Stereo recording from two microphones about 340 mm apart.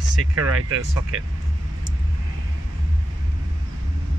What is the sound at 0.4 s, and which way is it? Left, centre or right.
Speech, right.